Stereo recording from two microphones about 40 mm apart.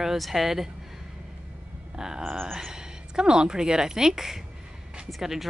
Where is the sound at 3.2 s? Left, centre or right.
Centre.